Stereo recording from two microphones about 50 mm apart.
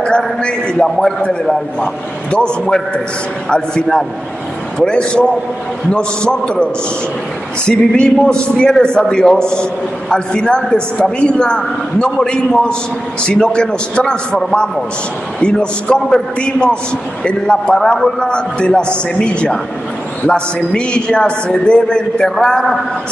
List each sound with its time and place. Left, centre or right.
0.4 s a man's voice: centre
0.8 s a man's voice: centre
2.3 s a man's voice: centre